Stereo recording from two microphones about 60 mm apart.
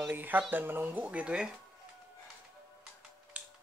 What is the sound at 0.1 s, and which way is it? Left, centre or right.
Speech, right.